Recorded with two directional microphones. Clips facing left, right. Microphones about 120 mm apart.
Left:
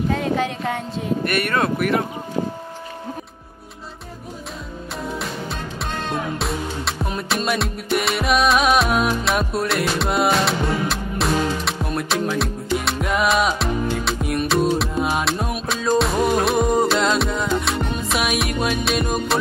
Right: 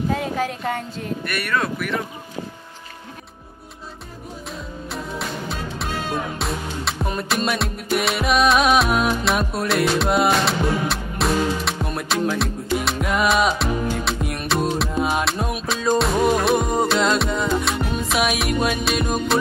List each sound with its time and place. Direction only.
0.1 s speech: 5° right (ahead or behind)
1.3 s speech: 55° left (ahead or behind)
4.9 s music: centre (ahead or behind)